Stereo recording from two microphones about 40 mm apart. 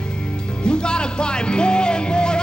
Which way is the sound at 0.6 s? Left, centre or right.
Left.